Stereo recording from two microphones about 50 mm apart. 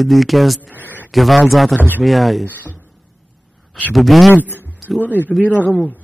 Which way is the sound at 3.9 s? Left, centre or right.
Centre.